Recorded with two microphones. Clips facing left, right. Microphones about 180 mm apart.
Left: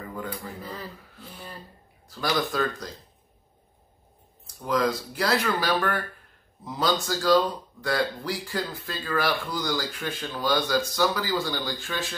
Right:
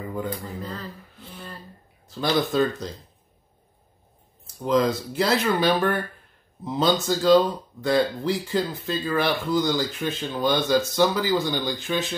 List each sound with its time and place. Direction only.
0.1 s a sound: 20° right (ahead or behind)
0.6 s speech: 10° left (ahead or behind)
2.0 s speech: 25° right (ahead or behind)
4.6 s speech: 25° right (ahead or behind)